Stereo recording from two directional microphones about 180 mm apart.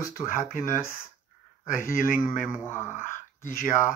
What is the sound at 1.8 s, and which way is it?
Speech, 50° left (ahead or behind).